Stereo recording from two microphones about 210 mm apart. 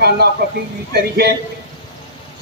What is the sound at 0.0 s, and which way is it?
Speech, 50° right (ahead or behind).